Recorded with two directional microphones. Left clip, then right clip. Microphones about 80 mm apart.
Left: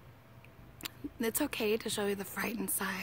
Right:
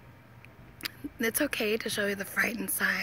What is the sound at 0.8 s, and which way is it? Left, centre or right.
Speech, left.